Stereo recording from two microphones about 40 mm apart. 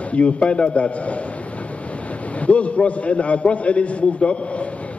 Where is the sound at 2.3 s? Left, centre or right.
Left.